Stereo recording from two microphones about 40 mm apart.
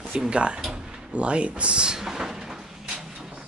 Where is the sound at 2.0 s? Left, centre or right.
Centre.